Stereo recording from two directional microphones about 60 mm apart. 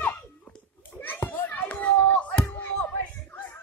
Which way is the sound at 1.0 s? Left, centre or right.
Left.